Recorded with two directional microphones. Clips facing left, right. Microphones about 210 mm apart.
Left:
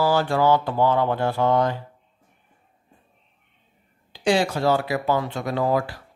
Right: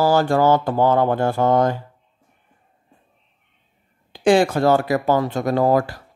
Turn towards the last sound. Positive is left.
turn(degrees=-45)  # may be behind; listen again after turning